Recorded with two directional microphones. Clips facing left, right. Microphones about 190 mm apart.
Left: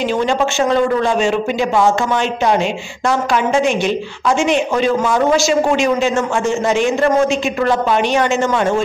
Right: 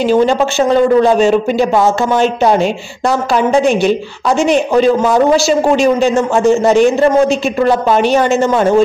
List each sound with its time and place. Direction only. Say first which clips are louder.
0.3 s speech: right 4 dB; 35° right (ahead or behind)